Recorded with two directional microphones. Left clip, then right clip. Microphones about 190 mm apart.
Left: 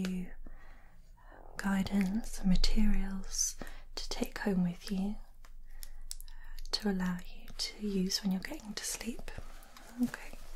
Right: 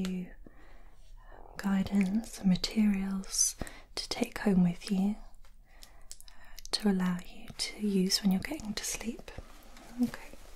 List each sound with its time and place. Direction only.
1.6 s speech: 15° right (ahead or behind); by 5.2 s 35° right (ahead or behind)
6.4 s speech: 30° right (ahead or behind); by 9.4 s 15° right (ahead or behind)